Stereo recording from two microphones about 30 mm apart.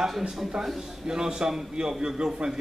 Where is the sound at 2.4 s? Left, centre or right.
Right.